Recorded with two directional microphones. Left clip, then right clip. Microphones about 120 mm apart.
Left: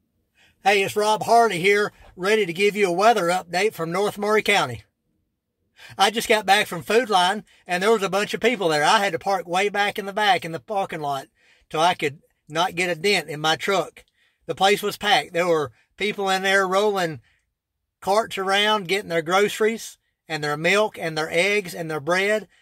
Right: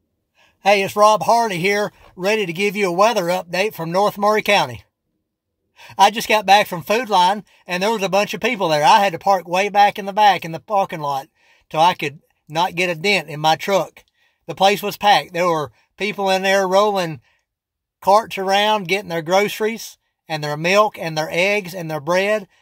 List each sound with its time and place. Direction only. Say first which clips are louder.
0.6 s speech: right 6 dB; 25° right (ahead or behind)